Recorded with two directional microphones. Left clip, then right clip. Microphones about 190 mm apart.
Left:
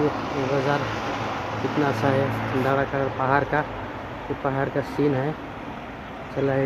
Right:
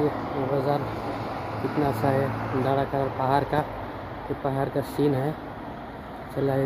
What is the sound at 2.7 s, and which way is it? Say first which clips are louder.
Speech: left 1 dB; 10° right (ahead or behind).